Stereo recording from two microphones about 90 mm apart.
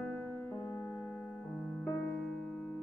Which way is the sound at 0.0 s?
5° left (ahead or behind).